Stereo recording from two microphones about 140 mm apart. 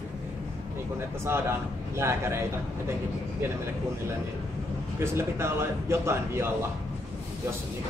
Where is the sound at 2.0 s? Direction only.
20° right (ahead or behind).